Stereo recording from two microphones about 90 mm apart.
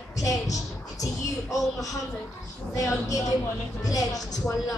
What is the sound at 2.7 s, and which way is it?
A woman's voice, 40° left (ahead or behind).